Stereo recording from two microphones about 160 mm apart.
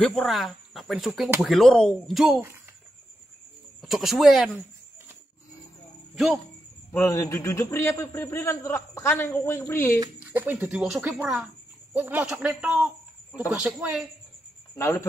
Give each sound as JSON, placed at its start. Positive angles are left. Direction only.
{"t": 0.0, "sound": "speech", "side_deg": 5}
{"t": 3.8, "sound": "speech", "side_deg": 0}
{"t": 6.9, "sound": "a man's voice", "side_deg": 15}
{"t": 9.9, "sound": "speech", "side_deg": -20}
{"t": 10.4, "sound": "a man's voice", "side_deg": -10}
{"t": 14.8, "sound": "a man's voice", "side_deg": 15}